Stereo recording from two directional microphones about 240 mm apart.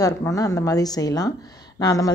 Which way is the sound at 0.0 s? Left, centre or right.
Centre.